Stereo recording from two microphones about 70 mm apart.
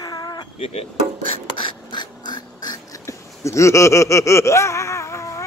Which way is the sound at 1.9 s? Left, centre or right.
Left.